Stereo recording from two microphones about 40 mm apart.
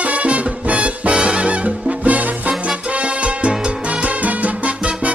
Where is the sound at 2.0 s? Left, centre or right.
Right.